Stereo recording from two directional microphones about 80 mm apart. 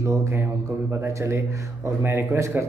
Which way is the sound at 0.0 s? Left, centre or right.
Right.